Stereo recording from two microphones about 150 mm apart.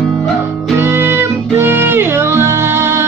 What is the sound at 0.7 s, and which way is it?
Music, 15° right (ahead or behind).